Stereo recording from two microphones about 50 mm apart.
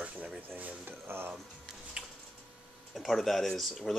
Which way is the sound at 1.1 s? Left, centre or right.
Right.